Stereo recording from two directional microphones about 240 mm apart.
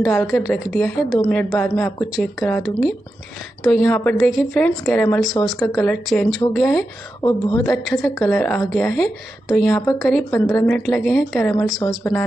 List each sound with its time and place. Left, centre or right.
0.0 s a woman's voice: centre
5.6 s speech: centre
6.0 s a woman's voice: centre
7.2 s a woman's voice: centre